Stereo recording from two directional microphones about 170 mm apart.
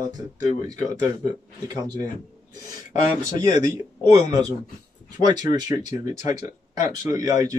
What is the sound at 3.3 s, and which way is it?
Speech, 25° right (ahead or behind).